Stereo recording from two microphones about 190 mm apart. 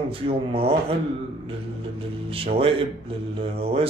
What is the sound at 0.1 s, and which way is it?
Speech, 30° right (ahead or behind).